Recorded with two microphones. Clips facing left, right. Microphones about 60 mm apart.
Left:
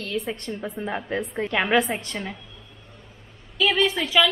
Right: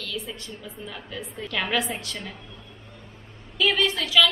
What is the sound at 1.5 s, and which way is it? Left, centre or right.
Speech, left.